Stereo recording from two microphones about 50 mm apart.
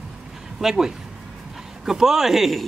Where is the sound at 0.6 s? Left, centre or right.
Centre.